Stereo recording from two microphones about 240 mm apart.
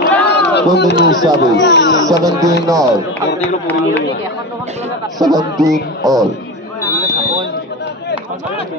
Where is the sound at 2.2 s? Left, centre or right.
Centre.